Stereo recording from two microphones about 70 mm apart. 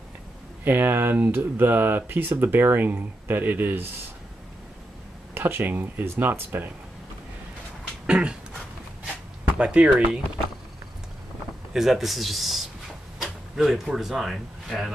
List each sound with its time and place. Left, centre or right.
0.7 s speech: right
5.3 s speech: right
8.1 s speech: centre
9.6 s speech: centre
11.7 s speech: centre